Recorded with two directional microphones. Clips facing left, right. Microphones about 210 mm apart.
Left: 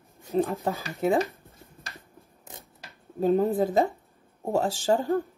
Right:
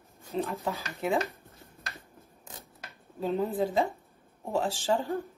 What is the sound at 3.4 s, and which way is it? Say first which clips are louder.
Speech: left 1 dB; 45° left (ahead or behind).